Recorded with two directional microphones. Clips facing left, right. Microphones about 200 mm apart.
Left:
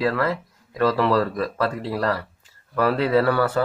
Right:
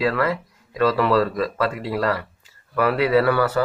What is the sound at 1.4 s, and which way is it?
Speech, 15° right (ahead or behind).